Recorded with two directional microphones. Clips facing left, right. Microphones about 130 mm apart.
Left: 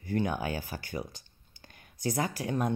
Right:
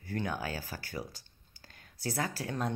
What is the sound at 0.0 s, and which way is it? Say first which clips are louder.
Speech: left 5 dB; 20° left (ahead or behind).